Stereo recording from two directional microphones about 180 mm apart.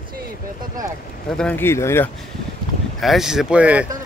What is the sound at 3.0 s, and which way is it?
Speech, centre (ahead or behind).